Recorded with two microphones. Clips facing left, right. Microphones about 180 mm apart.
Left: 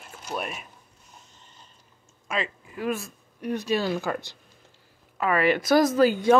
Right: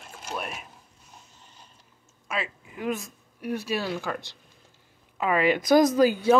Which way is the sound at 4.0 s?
5° left (ahead or behind).